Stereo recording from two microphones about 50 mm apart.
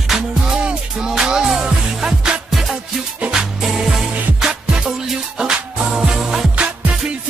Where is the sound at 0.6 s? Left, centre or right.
Centre.